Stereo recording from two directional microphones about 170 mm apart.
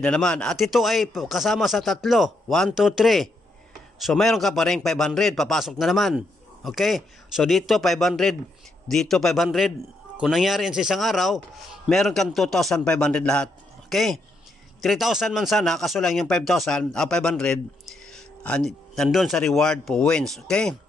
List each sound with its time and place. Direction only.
0.0 s speech: 5° left (ahead or behind)